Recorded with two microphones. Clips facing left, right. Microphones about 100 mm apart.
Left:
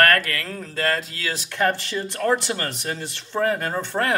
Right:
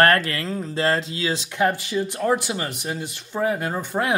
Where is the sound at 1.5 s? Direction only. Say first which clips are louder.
Even; 10° right (ahead or behind).